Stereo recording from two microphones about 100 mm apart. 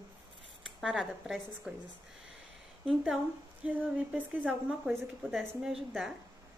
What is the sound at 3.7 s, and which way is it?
Speech, 15° right (ahead or behind).